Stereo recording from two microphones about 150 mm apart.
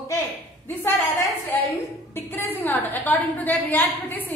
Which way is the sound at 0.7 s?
15° left (ahead or behind).